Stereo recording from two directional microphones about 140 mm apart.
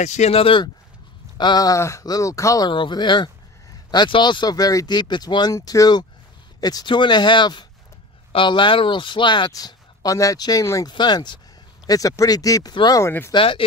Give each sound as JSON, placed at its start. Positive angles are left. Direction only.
{"t": 0.0, "sound": "speech", "side_deg": 55}
{"t": 1.4, "sound": "speech", "side_deg": 30}
{"t": 13.3, "sound": "speech", "side_deg": 40}